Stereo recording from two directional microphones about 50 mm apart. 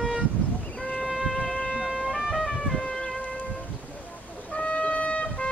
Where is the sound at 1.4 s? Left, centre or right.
Centre.